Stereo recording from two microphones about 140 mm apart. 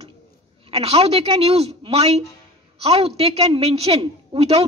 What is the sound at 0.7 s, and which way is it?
A woman's voice, 45° right (ahead or behind).